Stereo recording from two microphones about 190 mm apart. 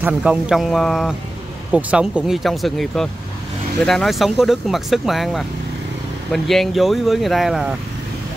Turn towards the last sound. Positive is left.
turn(degrees=0)  # may be behind; listen again after turning